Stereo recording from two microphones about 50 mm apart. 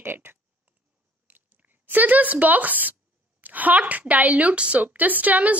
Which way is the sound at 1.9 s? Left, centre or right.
Right.